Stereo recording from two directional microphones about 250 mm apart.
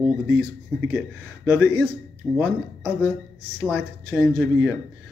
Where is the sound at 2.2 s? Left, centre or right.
Centre.